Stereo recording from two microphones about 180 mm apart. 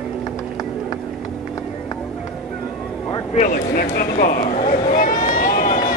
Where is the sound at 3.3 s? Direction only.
50° left (ahead or behind).